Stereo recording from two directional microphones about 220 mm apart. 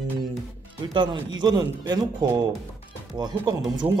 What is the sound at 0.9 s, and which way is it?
A man's voice, 20° right (ahead or behind).